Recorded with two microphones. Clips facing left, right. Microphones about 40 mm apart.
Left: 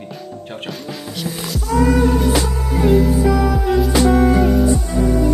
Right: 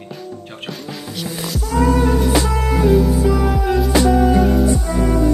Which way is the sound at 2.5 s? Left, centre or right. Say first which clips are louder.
Right 4 dB; right.